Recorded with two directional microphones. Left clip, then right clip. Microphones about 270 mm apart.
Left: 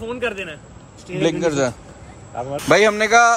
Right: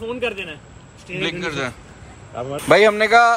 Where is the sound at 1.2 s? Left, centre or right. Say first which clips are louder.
Left 6 dB; left.